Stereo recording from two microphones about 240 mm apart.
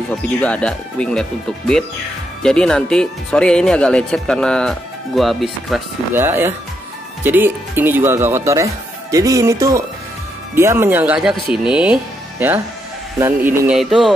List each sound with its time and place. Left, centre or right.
0.1 s speech: centre
2.4 s speech: centre